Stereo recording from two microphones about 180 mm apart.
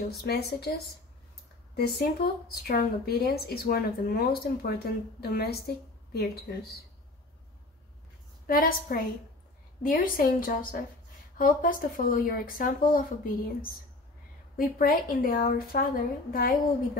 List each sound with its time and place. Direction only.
0.0 s speech: 60° left (ahead or behind)
1.8 s speech: 60° left (ahead or behind)
8.5 s a woman's voice: 50° left (ahead or behind)
14.8 s a woman's voice: 55° left (ahead or behind)